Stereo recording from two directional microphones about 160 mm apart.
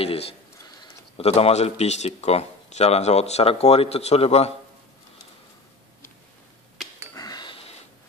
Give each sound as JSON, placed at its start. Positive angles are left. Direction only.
{"t": 0.0, "sound": "a sound", "side_deg": 40}
{"t": 1.1, "sound": "speech", "side_deg": 40}
{"t": 7.2, "sound": "sniff", "side_deg": 25}